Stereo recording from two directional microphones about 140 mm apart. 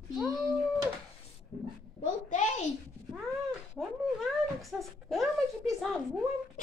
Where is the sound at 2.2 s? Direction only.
60° left (ahead or behind).